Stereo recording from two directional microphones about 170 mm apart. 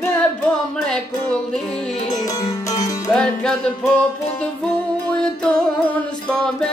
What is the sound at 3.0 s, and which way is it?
Music, 5° left (ahead or behind).